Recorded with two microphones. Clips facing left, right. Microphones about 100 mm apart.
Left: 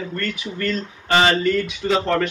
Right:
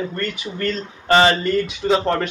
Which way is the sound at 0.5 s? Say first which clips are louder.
Even; 30° right (ahead or behind).